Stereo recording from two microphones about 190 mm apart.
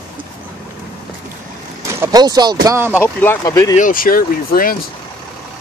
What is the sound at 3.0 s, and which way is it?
Speech, 10° left (ahead or behind).